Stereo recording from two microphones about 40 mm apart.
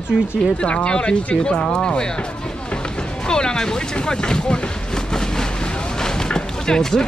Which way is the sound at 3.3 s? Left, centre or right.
Centre.